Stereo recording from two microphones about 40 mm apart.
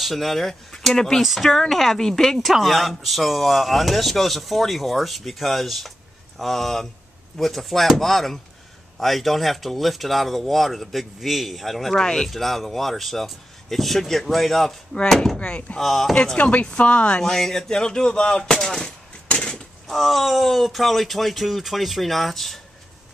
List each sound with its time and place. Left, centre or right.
0.0 s speech: centre
1.2 s speech: centre
1.5 s speech: centre
2.4 s speech: centre
15.3 s speech: left
15.8 s speech: centre
16.3 s speech: left
17.2 s speech: centre
19.5 s speech: centre